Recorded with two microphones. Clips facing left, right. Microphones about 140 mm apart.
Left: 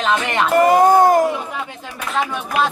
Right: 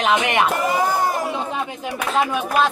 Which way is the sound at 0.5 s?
55° left (ahead or behind).